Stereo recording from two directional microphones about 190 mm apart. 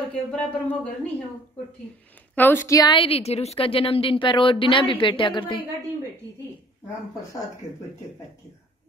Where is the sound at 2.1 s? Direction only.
10° left (ahead or behind); by 5.6 s 25° left (ahead or behind).